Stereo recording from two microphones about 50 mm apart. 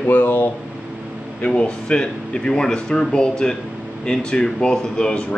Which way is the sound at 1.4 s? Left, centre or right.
Left.